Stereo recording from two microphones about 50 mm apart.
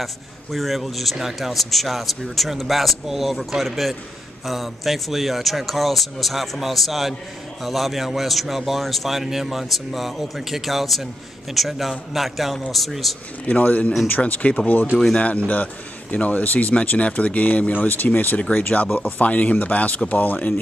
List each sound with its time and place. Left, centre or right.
0.0 s a man's voice: centre
13.5 s a man's voice: left